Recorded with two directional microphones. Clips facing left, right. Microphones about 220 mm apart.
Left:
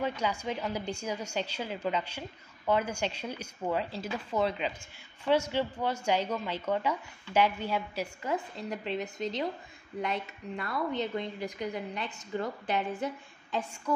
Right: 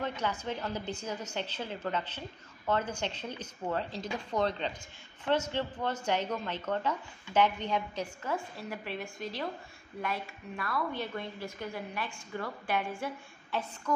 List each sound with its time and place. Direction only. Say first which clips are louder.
0.0 s a woman's voice: left 2 dB; 10° left (ahead or behind)